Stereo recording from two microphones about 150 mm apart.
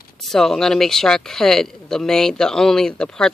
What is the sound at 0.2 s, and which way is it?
Speech, centre (ahead or behind).